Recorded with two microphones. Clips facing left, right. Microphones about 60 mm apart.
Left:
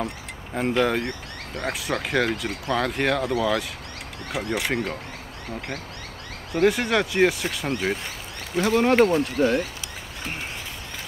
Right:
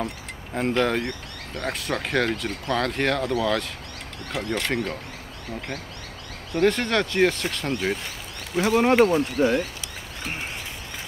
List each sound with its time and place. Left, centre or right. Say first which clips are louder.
0.6 s speech: left 1 dB; centre
6.5 s speech: left 1 dB; centre
8.5 s speech: even; centre
9.4 s speech: even; centre